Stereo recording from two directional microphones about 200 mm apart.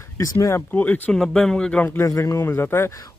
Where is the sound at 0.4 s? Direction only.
15° left (ahead or behind).